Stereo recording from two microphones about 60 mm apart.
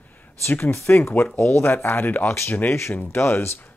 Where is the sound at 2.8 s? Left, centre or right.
Left.